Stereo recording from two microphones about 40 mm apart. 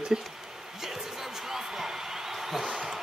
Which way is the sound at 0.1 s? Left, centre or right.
Right.